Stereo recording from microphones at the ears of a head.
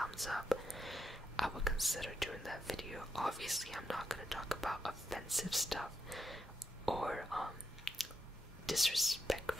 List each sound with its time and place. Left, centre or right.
0.0 s speech: centre
6.9 s whispering: centre
8.6 s speech: centre